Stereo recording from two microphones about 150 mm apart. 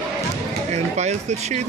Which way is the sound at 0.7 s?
50° right (ahead or behind).